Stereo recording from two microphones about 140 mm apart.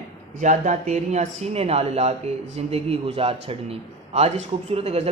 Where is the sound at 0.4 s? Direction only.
60° right (ahead or behind).